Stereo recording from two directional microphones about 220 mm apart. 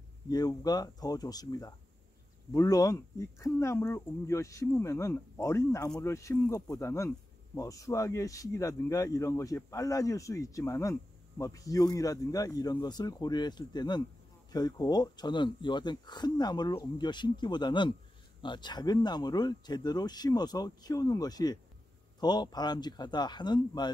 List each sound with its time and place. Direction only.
0.3 s speech: 15° left (ahead or behind)